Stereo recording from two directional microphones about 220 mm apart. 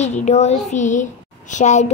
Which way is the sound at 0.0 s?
30° left (ahead or behind).